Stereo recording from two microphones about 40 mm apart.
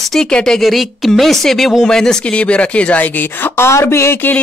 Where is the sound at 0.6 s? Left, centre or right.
Centre.